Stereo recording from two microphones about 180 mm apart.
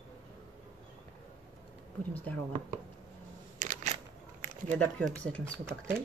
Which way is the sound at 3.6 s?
45° right (ahead or behind).